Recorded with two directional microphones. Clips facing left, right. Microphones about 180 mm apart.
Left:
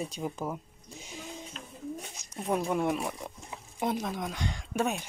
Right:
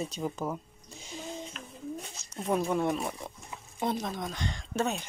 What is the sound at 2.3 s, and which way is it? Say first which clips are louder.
Speech: right 1 dB; 5° left (ahead or behind).